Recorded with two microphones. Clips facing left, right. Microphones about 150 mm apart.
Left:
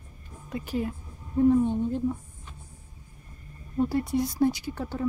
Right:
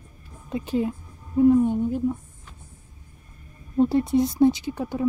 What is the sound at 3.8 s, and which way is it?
Speech, 25° right (ahead or behind).